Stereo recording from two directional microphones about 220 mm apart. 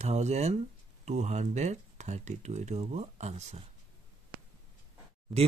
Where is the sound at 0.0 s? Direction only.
30° right (ahead or behind).